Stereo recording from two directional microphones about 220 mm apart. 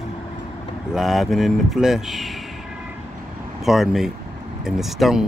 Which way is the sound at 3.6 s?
Centre (ahead or behind).